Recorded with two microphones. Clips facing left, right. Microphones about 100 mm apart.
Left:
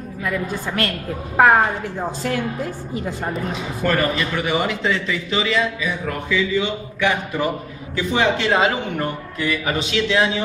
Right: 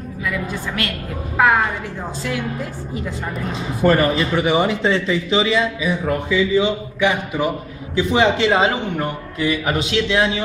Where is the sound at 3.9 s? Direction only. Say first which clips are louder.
Right 4 dB; 25° right (ahead or behind).